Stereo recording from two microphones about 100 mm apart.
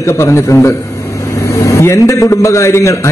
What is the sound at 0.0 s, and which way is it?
A man's voice, 25° left (ahead or behind).